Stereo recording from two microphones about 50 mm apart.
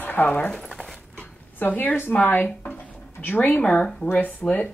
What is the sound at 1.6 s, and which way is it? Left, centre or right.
Speech, left.